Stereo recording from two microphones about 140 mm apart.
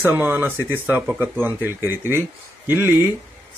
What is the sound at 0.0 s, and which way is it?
Speech, 15° right (ahead or behind).